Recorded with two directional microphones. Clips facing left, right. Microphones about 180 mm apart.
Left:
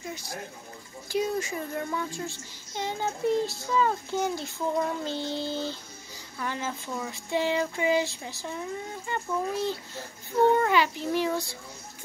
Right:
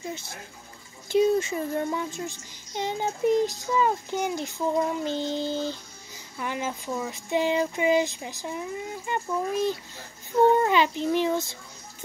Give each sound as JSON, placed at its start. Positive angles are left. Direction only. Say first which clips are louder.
{"t": 0.1, "sound": "a child's voice", "louder": "even", "side_deg": -25}